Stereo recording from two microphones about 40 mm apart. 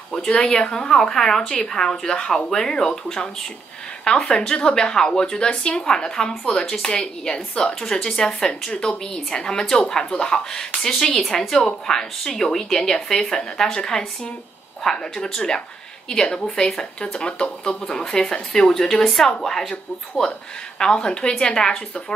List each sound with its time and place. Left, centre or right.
0.3 s a woman's voice: left
20.8 s speech: left